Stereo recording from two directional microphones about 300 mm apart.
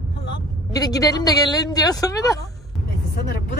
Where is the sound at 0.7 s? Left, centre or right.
Centre.